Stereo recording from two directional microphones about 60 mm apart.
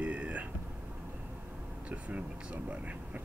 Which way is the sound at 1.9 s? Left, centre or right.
Right.